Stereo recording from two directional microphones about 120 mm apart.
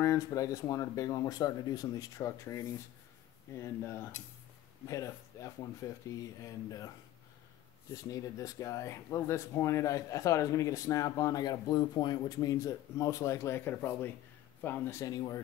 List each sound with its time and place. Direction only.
0.0 s speech: 30° left (ahead or behind)
4.8 s speech: 30° left (ahead or behind)
7.9 s a man's voice: 30° left (ahead or behind)